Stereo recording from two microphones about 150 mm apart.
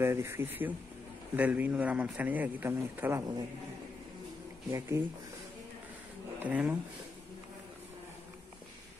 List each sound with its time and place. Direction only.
0.0 s a man's voice: 15° right (ahead or behind)
4.6 s speech: 20° right (ahead or behind)
6.4 s a man's voice: 10° right (ahead or behind)